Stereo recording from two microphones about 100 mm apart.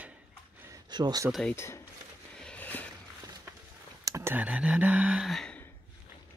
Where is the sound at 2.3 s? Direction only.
5° left (ahead or behind).